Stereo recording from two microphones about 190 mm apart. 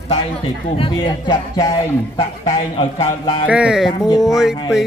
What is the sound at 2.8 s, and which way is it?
Speech, 35° left (ahead or behind).